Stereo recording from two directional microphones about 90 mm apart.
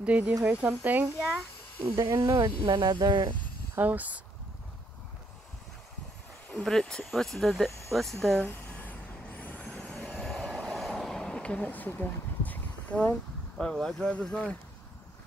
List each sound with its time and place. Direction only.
0.0 s speech: 15° right (ahead or behind)
2.0 s speech: 40° right (ahead or behind)
2.5 s speech: 80° right
2.8 s speech: 55° right (ahead or behind)
3.7 s speech: 20° right (ahead or behind)
6.5 s speech: 5° left (ahead or behind)
8.4 s vehicle: 20° left (ahead or behind)
10.0 s vehicle: 5° left (ahead or behind)
13.6 s speech: 5° left (ahead or behind)